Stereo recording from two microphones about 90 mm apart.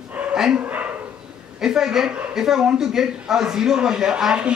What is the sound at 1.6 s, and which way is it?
A man's voice, 5° right (ahead or behind).